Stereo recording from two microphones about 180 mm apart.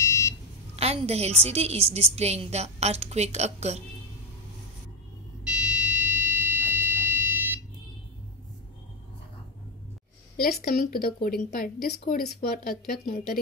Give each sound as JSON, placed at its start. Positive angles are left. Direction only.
{"t": 0.0, "sound": "a sound", "side_deg": 15}
{"t": 0.7, "sound": "a woman's voice", "side_deg": -35}
{"t": 5.4, "sound": "fire alarm", "side_deg": -5}
{"t": 10.3, "sound": "a woman's voice", "side_deg": 55}